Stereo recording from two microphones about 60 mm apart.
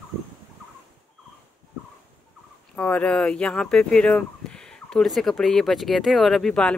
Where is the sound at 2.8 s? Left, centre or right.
Left; by 6.5 s centre.